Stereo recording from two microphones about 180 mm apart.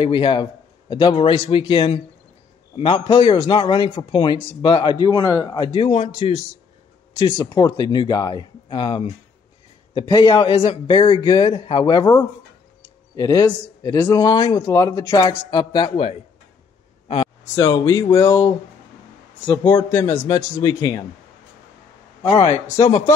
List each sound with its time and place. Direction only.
0.0 s speech: 30° left (ahead or behind)
17.6 s speech: 20° left (ahead or behind)
19.7 s speech: 10° left (ahead or behind)
22.2 s a man's voice: 30° left (ahead or behind)
22.8 s speech: 20° left (ahead or behind)